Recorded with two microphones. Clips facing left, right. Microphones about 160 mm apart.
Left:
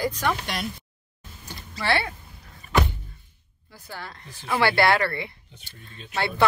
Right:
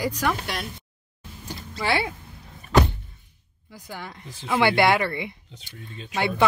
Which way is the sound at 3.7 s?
15° right (ahead or behind).